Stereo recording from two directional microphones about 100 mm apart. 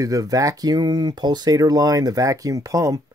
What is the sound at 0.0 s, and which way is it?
Speech, 35° right (ahead or behind).